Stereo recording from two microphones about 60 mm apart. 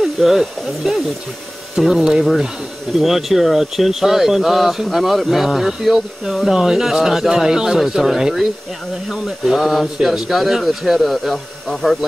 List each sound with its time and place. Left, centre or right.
0.0 s speech: centre